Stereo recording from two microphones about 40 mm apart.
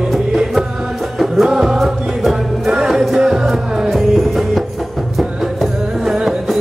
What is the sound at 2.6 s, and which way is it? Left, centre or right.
Music, centre.